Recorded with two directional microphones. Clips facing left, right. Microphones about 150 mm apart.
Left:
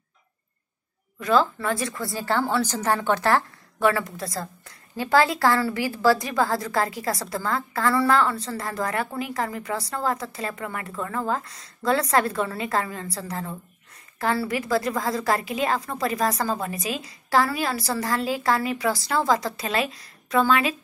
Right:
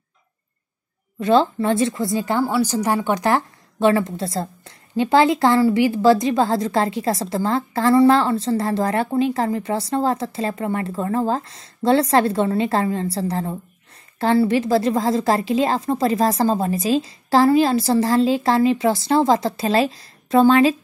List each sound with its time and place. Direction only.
1.2 s a woman's voice: 30° right (ahead or behind)